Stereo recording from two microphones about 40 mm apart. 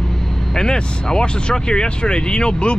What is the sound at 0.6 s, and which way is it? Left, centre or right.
Speech, centre.